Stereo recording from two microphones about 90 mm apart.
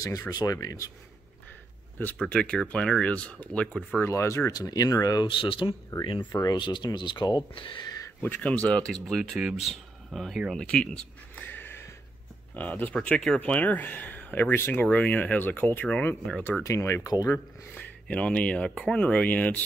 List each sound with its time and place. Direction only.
0.0 s speech: 40° left (ahead or behind)
2.1 s speech: 10° left (ahead or behind)
3.9 s speech: 30° left (ahead or behind)
4.5 s speech: 45° left (ahead or behind)
5.2 s speech: 70° left (ahead or behind)
6.5 s speech: 55° left (ahead or behind)
7.5 s speech: 70° left (ahead or behind)
8.2 s speech: 15° left (ahead or behind)
16.6 s speech: 30° left (ahead or behind)
17.7 s speech: 15° left (ahead or behind)